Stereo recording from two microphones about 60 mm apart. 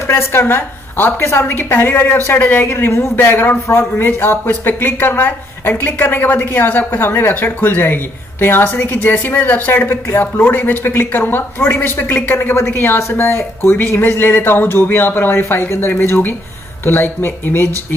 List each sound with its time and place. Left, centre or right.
0.0 s speech: left